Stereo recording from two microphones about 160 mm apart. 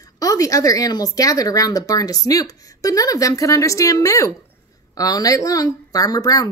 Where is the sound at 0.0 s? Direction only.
20° left (ahead or behind).